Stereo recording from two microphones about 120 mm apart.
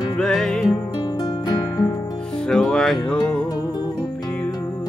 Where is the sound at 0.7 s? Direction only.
35° left (ahead or behind).